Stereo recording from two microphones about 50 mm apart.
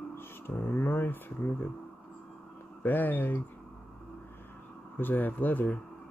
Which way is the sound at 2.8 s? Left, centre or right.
Left.